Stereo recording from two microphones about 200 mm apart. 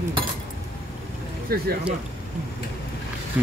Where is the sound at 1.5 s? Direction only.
45° right (ahead or behind).